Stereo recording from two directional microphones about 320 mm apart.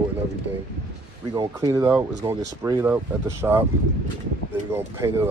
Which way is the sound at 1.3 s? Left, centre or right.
Centre.